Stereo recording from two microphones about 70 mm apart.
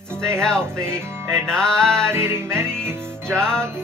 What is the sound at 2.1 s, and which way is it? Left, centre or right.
Music, right.